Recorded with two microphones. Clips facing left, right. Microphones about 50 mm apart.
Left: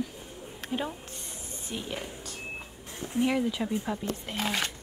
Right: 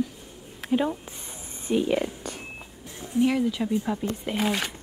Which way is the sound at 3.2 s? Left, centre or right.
Centre.